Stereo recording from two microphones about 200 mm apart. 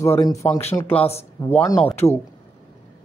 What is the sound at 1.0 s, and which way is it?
Speech, 30° left (ahead or behind).